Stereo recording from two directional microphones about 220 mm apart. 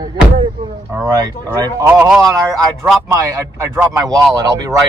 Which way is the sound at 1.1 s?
15° right (ahead or behind).